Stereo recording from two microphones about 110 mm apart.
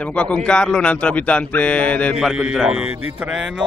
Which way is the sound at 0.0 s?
10° left (ahead or behind).